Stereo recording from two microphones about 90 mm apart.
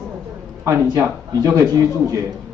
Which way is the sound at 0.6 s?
35° right (ahead or behind).